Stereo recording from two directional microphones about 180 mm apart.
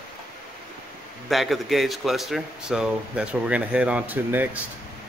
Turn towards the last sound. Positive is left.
turn(degrees=-10)  # may be behind; listen again after turning